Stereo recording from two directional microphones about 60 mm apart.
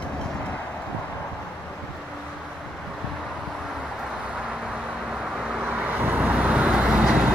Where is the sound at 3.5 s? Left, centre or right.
Centre.